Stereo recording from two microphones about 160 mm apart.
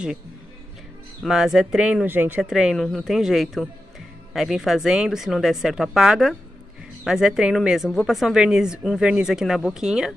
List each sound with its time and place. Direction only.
1.2 s speech: 5° right (ahead or behind)